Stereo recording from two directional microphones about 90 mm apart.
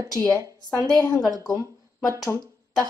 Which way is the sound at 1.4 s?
40° left (ahead or behind).